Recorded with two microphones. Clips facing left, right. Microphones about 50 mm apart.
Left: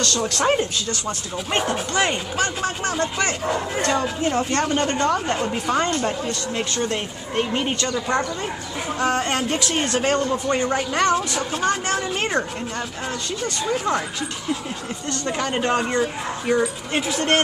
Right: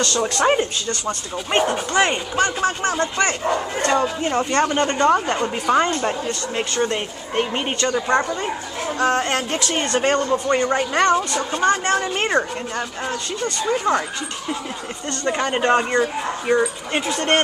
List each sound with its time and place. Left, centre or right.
0.0 s speech: centre
8.9 s speech: centre
13.7 s speech: centre
15.3 s speech: centre